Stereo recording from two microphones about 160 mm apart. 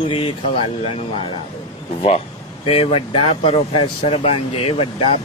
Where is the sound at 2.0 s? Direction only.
40° left (ahead or behind).